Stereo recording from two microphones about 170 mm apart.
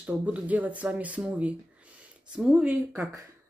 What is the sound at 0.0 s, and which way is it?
Speech, 10° right (ahead or behind).